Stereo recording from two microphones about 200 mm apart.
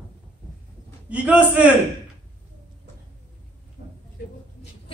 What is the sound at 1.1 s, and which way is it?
Speech, 5° right (ahead or behind).